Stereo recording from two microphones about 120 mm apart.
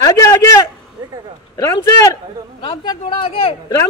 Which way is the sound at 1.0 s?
35° right (ahead or behind).